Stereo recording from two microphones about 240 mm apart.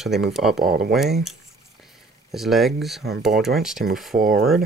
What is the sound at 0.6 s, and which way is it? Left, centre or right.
Speech, right.